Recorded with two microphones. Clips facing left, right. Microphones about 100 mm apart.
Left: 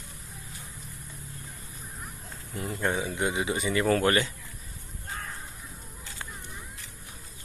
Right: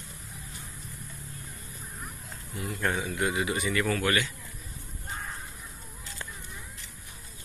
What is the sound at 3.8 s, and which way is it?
Speech, 35° left (ahead or behind).